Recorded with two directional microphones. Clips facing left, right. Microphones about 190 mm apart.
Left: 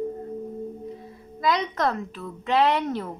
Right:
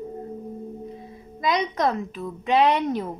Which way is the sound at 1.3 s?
20° right (ahead or behind).